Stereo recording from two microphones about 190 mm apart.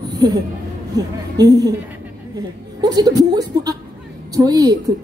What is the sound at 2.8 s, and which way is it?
A woman's voice, 20° right (ahead or behind).